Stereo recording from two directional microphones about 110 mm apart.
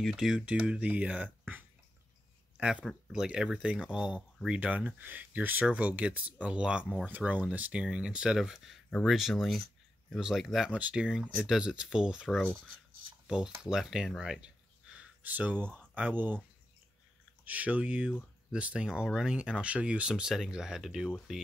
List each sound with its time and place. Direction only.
0.0 s speech: 5° right (ahead or behind)
2.5 s a sound: 10° right (ahead or behind)
3.1 s speech: 5° right (ahead or behind)
13.7 s speech: 5° right (ahead or behind)
17.5 s speech: 15° right (ahead or behind)